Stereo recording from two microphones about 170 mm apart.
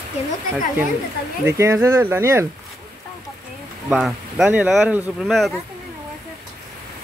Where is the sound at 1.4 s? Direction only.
15° right (ahead or behind).